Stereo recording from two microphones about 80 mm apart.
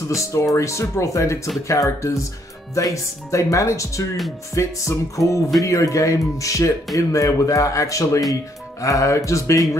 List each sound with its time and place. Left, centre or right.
0.2 s speech: left